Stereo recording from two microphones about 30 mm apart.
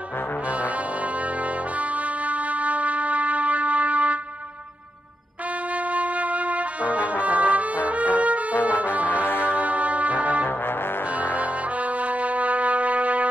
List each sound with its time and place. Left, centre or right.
0.5 s brass instrument: right
5.7 s music: right
9.6 s music: right